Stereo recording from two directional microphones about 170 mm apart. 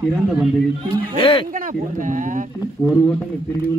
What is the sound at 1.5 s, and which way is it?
Speech, 50° right (ahead or behind).